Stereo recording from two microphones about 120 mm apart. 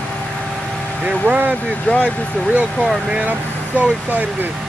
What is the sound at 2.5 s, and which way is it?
Speech, 15° right (ahead or behind).